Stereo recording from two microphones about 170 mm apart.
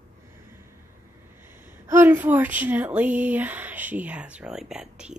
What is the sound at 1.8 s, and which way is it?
Speech, 15° right (ahead or behind).